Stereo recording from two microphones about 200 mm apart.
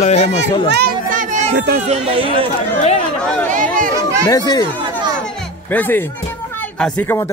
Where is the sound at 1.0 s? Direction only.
40° right (ahead or behind).